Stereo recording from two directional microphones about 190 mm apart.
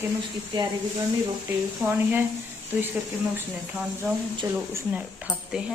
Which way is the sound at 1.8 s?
10° right (ahead or behind).